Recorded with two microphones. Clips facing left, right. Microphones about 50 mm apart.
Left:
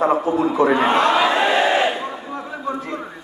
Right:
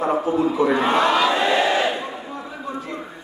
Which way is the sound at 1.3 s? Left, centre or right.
Left.